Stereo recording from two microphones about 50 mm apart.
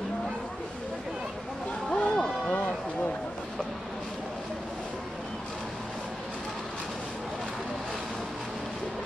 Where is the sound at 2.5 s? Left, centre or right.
Left.